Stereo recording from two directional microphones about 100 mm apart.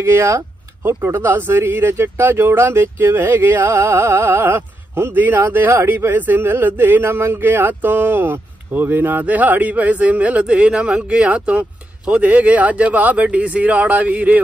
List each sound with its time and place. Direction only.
0.0 s speech: 25° right (ahead or behind)